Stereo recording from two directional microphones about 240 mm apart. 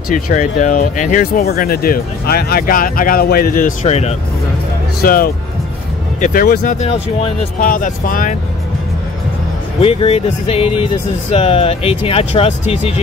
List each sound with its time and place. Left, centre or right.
0.1 s speech: left
5.0 s speech: left
9.8 s speech: left